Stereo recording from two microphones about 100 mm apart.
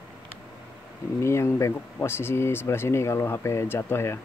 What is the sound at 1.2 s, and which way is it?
Speech, 30° left (ahead or behind).